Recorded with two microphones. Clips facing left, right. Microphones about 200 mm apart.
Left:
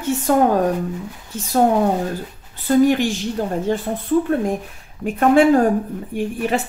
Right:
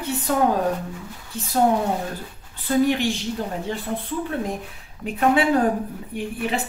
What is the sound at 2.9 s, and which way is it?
Speech, 45° left (ahead or behind).